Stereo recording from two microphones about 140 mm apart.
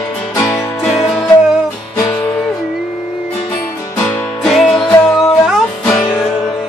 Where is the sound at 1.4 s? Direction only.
5° right (ahead or behind).